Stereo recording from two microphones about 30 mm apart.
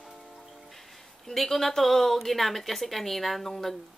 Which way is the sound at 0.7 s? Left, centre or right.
Centre.